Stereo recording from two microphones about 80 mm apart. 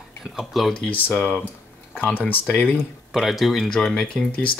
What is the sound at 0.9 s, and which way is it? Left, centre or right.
Speech, left.